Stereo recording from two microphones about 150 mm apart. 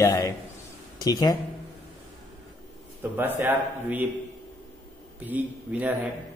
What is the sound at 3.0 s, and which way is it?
A man's voice, 15° right (ahead or behind).